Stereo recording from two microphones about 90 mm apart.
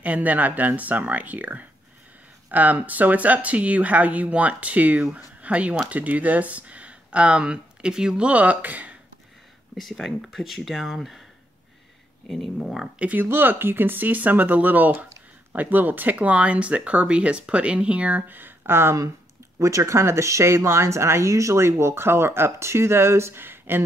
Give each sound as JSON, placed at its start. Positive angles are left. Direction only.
{"t": 0.0, "sound": "speech", "side_deg": -15}
{"t": 9.8, "sound": "speech", "side_deg": 0}
{"t": 12.3, "sound": "speech", "side_deg": 5}
{"t": 13.0, "sound": "speech", "side_deg": -20}